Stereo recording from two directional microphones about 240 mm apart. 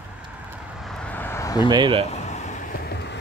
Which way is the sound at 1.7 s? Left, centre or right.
Centre.